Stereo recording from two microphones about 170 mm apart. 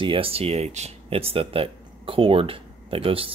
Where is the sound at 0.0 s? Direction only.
30° right (ahead or behind).